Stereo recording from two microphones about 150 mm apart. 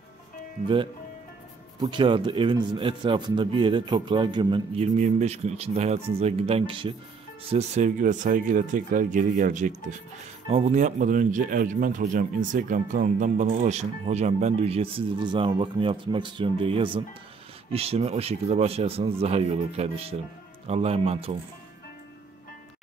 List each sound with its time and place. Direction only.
1.8 s a man's voice: 30° right (ahead or behind)
4.8 s speech: 50° right (ahead or behind)
7.5 s a man's voice: 50° right (ahead or behind)